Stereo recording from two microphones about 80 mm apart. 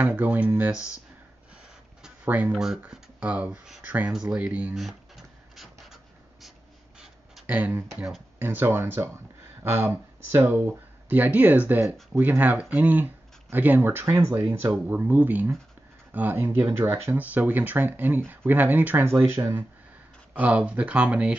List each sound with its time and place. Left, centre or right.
0.0 s speech: centre
2.2 s speech: right
4.7 s a sound: centre
7.4 s speech: centre
11.1 s speech: centre
19.2 s speech: right
20.3 s speech: centre